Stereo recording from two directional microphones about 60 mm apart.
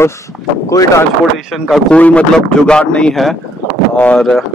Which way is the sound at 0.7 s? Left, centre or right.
Left.